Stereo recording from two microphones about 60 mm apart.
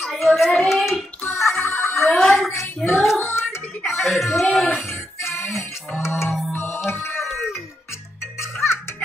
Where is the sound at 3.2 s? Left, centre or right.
Left.